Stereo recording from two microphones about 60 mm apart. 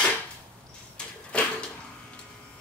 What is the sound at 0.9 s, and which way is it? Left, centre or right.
Vehicle, centre.